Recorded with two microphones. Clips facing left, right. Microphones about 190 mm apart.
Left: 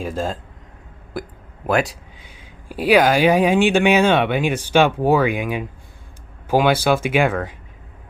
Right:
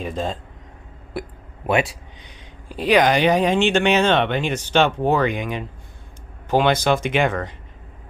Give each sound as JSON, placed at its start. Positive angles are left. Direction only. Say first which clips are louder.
{"t": 0.0, "sound": "speech", "louder": "left 1 dB", "side_deg": 0}